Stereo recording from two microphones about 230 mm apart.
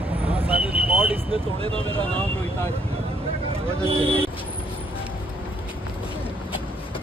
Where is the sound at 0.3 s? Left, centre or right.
Centre.